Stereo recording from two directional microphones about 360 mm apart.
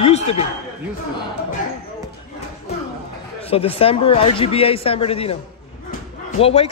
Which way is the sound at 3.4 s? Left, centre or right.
Centre.